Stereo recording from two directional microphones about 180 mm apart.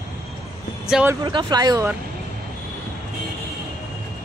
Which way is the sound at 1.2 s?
25° right (ahead or behind).